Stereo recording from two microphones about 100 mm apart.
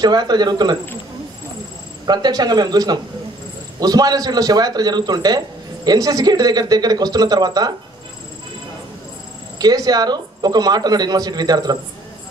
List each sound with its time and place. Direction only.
0.0 s speech: 45° right (ahead or behind)
2.0 s speech: 45° right (ahead or behind)
9.6 s speech: 40° right (ahead or behind)